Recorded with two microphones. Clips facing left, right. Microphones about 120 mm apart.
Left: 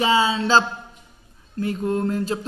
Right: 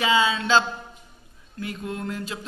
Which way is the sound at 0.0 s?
35° left (ahead or behind).